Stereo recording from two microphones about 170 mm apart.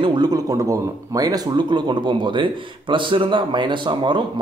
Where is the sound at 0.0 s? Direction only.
25° right (ahead or behind).